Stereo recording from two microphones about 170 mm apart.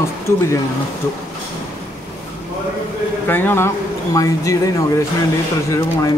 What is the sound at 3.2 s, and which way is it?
Speech, 10° left (ahead or behind).